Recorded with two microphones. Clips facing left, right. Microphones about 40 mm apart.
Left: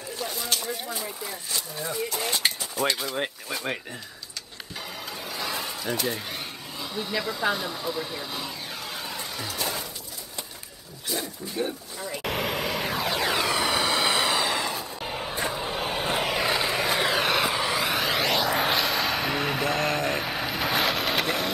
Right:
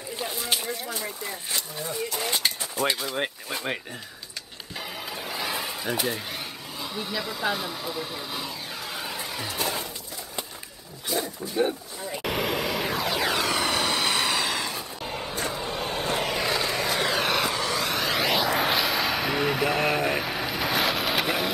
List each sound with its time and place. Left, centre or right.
0.2 s speech: centre
1.8 s speech: centre
4.7 s a sound: centre
11.4 s speech: centre
12.1 s vehicle: centre